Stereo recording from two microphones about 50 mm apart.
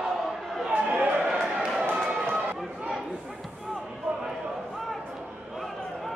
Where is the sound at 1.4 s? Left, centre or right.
Centre.